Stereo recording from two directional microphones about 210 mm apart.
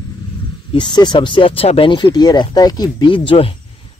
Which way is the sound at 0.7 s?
20° left (ahead or behind).